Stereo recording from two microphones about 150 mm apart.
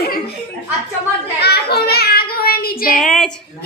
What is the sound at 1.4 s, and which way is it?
Child singing, 90° left.